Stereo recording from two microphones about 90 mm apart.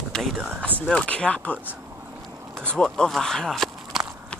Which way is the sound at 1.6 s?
20° right (ahead or behind).